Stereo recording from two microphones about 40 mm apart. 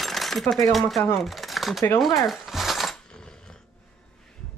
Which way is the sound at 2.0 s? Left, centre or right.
Centre.